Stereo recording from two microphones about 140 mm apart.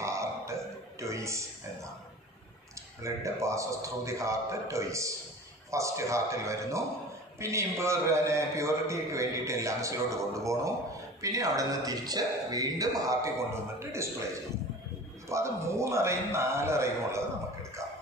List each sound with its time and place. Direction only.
0.0 s music: 20° right (ahead or behind)
3.0 s a man's voice: 20° right (ahead or behind)
15.2 s a man's voice: 20° right (ahead or behind)